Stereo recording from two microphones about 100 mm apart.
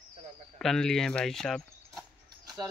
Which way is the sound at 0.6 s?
5° left (ahead or behind).